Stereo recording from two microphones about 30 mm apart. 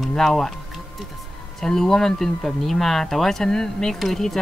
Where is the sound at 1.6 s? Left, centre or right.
Centre.